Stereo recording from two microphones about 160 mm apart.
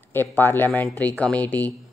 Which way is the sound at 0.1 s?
15° left (ahead or behind).